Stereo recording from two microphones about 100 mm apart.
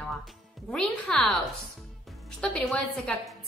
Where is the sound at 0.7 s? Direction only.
5° left (ahead or behind).